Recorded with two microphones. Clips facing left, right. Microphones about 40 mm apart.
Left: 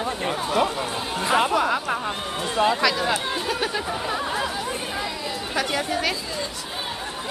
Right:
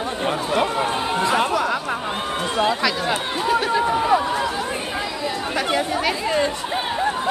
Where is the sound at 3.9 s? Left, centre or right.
Right.